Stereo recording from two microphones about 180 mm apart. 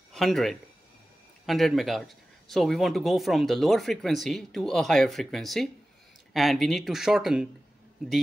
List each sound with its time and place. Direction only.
0.1 s speech: centre (ahead or behind)